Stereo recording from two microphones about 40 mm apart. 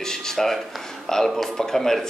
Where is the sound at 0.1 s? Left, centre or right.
Centre.